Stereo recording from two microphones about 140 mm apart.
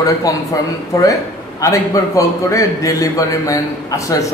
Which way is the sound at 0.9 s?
25° left (ahead or behind).